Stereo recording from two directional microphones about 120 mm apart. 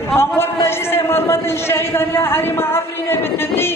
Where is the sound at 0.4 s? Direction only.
20° left (ahead or behind).